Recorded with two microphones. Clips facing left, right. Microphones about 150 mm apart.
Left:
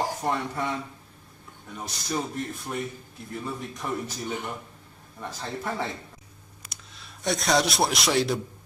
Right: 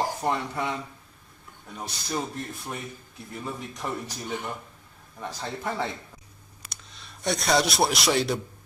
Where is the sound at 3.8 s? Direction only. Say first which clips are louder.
Left 1 dB; 10° right (ahead or behind).